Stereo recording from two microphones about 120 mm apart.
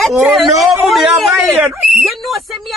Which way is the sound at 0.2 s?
Centre (ahead or behind).